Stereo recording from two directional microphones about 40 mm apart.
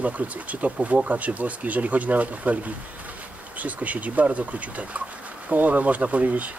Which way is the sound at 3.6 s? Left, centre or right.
Right.